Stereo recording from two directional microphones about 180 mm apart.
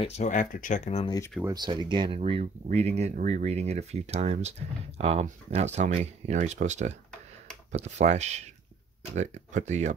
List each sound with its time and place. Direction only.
0.0 s speech: 40° left (ahead or behind)
1.0 s speech: 20° left (ahead or behind)
1.4 s speech: 25° right (ahead or behind); by 9.9 s 40° right (ahead or behind)